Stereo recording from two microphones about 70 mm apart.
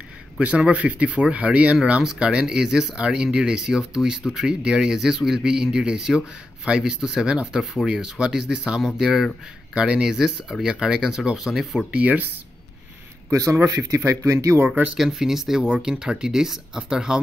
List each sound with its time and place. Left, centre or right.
0.4 s speech: centre
11.9 s speech: centre
13.3 s speech: right
14.7 s speech: centre